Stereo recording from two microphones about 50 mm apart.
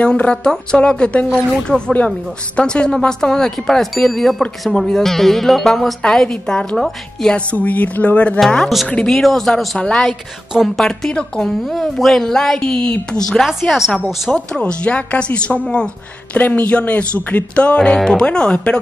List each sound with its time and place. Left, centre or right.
0.0 s speech: left; by 5.9 s centre
6.0 s speech: centre
7.3 s speech: left
9.1 s speech: centre
9.8 s speech: left
11.6 s speech: centre
13.7 s speech: centre
14.3 s speech: centre
16.3 s speech: left